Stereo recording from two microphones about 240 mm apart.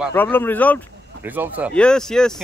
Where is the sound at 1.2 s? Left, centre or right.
Centre.